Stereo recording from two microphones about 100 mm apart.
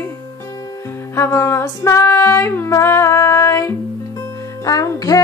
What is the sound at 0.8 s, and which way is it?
Music, 25° left (ahead or behind).